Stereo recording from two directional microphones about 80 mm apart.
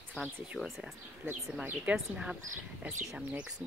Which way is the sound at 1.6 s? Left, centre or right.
Centre.